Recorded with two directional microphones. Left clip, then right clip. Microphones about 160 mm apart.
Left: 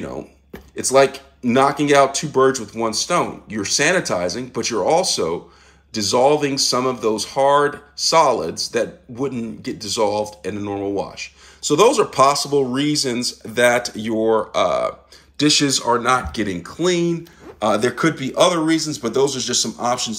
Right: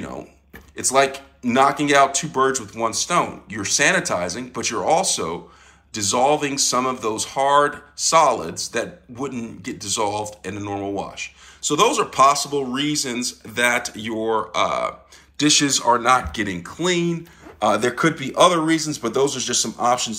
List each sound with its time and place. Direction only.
0.7 s speech: 35° left (ahead or behind)